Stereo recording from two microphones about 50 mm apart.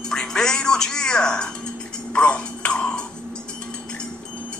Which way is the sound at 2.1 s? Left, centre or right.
Left.